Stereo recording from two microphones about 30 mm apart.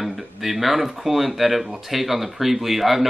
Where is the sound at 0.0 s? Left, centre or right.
Centre.